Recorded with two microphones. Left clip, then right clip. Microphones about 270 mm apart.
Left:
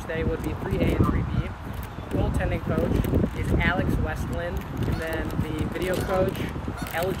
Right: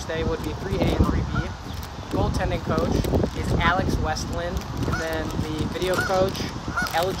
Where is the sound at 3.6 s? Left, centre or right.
Centre.